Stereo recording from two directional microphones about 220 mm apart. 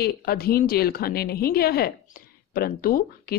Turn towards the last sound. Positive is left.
turn(degrees=45)  # may be behind; listen again after turning